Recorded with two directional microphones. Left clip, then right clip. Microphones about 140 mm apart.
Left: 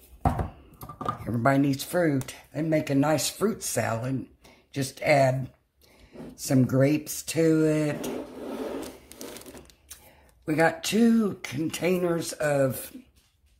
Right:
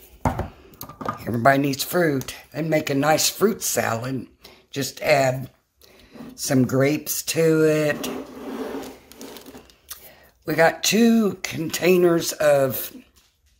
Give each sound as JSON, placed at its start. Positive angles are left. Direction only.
{"t": 1.2, "sound": "speech", "side_deg": -30}
{"t": 6.3, "sound": "speech", "side_deg": -25}
{"t": 9.9, "sound": "a sound", "side_deg": -25}
{"t": 10.4, "sound": "speech", "side_deg": -30}